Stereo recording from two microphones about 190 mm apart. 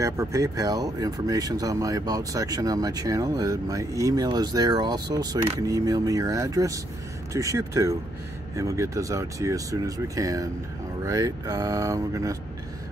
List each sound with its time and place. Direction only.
0.0 s speech: 15° right (ahead or behind)